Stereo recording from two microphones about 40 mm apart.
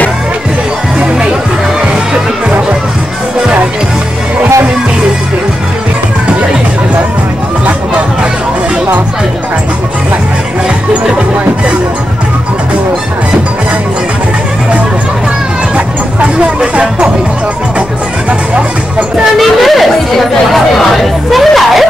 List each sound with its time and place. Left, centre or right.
16.2 s music: right
19.3 s a sound: centre
20.5 s chatter: centre